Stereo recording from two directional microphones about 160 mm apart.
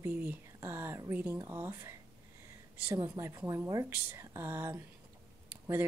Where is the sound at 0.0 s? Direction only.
10° right (ahead or behind).